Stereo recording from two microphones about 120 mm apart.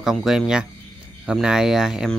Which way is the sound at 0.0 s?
5° right (ahead or behind).